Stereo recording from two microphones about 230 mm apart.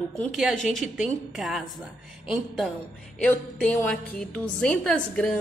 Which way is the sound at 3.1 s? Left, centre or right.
Centre.